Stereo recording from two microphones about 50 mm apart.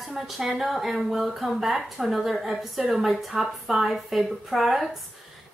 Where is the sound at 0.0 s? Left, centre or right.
Centre.